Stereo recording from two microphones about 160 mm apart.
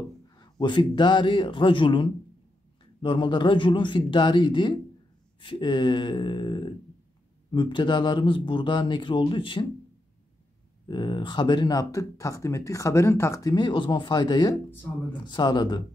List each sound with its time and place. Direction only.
0.4 s speech: 30° left (ahead or behind)
10.9 s speech: 30° left (ahead or behind)